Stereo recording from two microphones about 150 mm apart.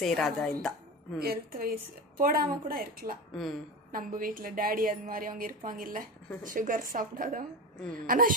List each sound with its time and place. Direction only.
0.0 s speech: centre (ahead or behind)
1.2 s a woman's voice: 90° right; by 8.3 s 70° right (ahead or behind)